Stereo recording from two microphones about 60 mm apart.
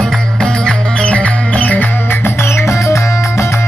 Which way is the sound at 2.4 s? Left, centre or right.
Left.